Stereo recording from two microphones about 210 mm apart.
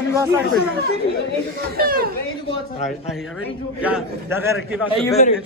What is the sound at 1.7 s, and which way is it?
Speech, 45° right (ahead or behind).